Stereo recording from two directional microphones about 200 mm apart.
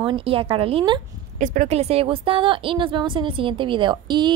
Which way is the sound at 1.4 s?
40° right (ahead or behind).